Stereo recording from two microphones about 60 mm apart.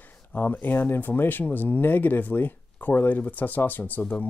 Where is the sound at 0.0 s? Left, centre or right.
Left.